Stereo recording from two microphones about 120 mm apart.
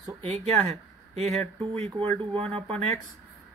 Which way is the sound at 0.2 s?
65° right (ahead or behind).